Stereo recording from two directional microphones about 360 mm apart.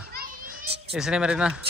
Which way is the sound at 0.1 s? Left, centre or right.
Right.